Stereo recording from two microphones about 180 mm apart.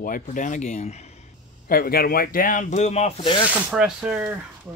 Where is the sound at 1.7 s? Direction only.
55° left (ahead or behind); by 3.4 s 30° left (ahead or behind).